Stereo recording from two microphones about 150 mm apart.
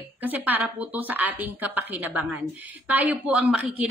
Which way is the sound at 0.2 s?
10° right (ahead or behind).